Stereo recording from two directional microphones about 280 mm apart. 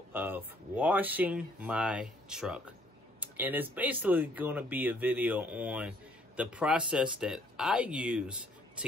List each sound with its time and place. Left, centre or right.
0.1 s speech: centre